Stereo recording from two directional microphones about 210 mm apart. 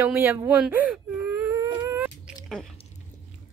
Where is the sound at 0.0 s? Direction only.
10° right (ahead or behind).